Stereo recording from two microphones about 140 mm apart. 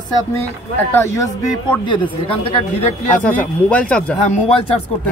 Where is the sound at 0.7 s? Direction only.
15° left (ahead or behind).